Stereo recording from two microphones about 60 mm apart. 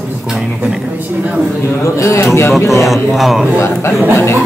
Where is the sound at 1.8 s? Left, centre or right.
Left.